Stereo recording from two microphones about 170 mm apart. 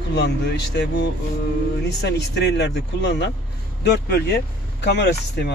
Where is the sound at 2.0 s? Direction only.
80° left.